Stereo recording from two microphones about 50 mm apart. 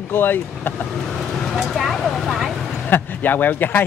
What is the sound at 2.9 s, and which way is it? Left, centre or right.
Speech, left.